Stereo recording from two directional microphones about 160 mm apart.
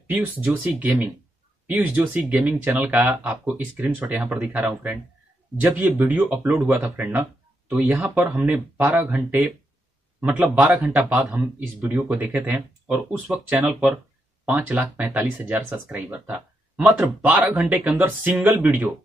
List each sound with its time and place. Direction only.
0.0 s speech: 10° right (ahead or behind)